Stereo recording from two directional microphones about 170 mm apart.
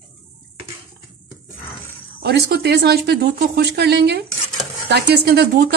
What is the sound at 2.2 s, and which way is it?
A woman's voice, 75° right (ahead or behind).